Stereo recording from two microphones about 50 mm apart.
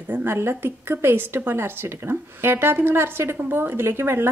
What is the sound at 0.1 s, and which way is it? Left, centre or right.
A woman's voice, right.